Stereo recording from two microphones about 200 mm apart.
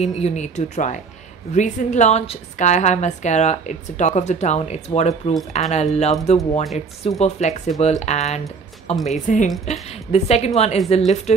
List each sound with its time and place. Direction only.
0.0 s a woman's voice: 35° left (ahead or behind)